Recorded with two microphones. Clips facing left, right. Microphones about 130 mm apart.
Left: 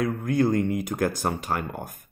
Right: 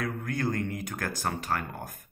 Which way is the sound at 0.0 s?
20° left (ahead or behind).